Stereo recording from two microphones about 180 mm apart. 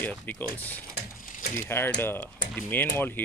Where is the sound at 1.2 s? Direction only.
50° left (ahead or behind).